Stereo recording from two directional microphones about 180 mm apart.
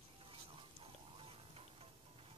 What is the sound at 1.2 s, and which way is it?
Music, 30° right (ahead or behind).